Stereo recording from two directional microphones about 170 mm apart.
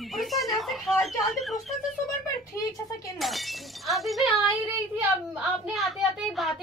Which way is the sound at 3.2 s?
Centre (ahead or behind).